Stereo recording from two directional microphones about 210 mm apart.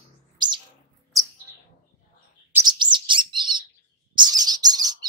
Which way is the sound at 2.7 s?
20° right (ahead or behind).